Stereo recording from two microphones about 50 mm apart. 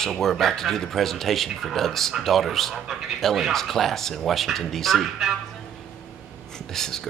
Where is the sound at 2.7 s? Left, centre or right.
Centre.